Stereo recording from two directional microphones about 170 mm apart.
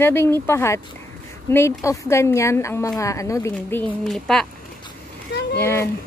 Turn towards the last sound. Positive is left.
turn(degrees=15)  # may be behind; listen again after turning